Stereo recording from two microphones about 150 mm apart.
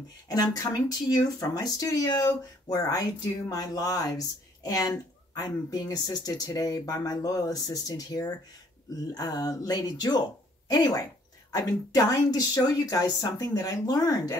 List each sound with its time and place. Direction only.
0.3 s speech: 25° left (ahead or behind)